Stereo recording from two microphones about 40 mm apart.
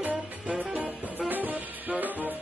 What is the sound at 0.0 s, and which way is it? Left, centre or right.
Music, right.